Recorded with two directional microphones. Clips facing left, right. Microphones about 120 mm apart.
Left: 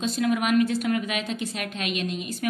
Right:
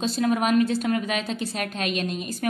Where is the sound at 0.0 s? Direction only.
35° right (ahead or behind).